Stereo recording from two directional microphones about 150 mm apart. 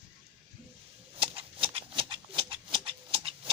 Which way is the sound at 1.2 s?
35° right (ahead or behind).